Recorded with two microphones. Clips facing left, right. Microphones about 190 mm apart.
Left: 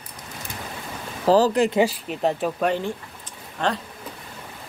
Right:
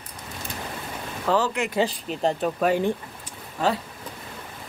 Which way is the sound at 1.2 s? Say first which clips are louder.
Left 6 dB; 35° left (ahead or behind).